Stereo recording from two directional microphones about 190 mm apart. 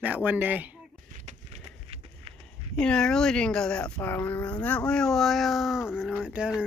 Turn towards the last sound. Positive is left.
turn(degrees=-5)  # may be behind; listen again after turning